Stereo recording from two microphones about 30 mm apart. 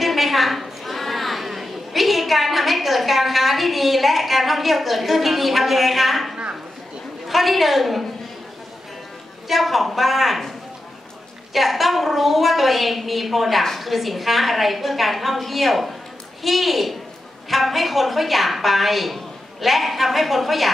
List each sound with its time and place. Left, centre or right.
0.0 s a sound: centre
7.2 s a woman's voice: centre
9.5 s a woman's voice: centre
11.5 s a woman's voice: centre